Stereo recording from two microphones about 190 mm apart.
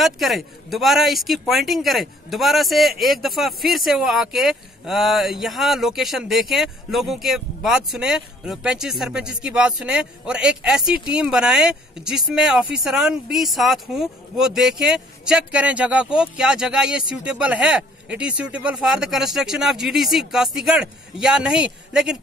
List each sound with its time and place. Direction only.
0.0 s a man's voice: centre (ahead or behind)